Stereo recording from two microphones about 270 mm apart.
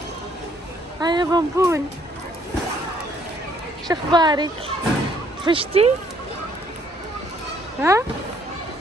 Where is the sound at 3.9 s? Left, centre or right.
Centre.